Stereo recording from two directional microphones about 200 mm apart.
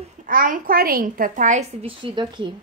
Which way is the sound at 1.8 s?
25° right (ahead or behind).